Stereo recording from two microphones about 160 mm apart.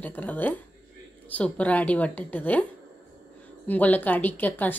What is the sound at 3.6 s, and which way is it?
Speech, 10° left (ahead or behind).